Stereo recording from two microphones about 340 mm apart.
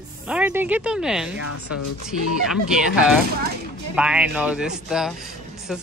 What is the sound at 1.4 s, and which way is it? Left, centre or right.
Speech, left.